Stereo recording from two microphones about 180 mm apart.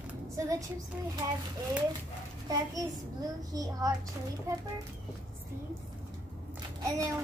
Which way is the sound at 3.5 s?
20° right (ahead or behind).